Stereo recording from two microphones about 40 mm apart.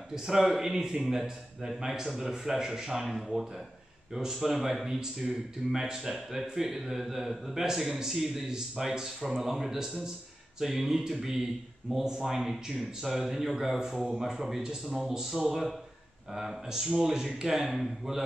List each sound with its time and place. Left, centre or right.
0.1 s speech: centre